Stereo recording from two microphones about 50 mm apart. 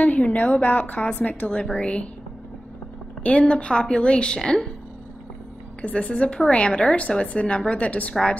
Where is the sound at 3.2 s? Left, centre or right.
Left.